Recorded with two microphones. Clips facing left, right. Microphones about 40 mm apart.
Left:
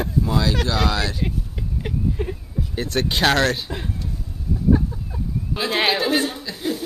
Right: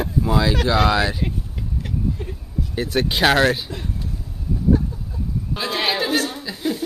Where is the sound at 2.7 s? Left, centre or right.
Centre.